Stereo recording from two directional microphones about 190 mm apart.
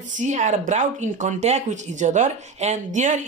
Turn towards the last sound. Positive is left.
turn(degrees=-40)  # may be behind; listen again after turning